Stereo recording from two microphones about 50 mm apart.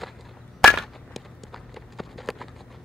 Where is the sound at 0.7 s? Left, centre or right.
Centre.